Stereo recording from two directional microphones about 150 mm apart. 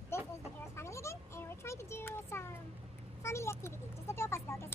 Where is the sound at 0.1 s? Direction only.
15° left (ahead or behind).